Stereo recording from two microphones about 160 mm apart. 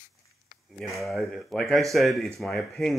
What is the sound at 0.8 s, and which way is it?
Speech, centre (ahead or behind).